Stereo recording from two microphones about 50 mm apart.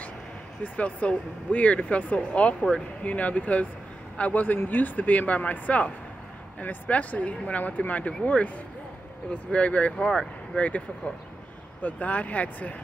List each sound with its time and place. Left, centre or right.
0.7 s speech: left
10.0 s speech: centre
11.8 s speech: left